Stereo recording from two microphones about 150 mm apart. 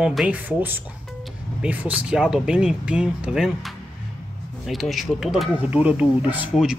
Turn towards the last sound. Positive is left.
turn(degrees=-5)  # may be behind; listen again after turning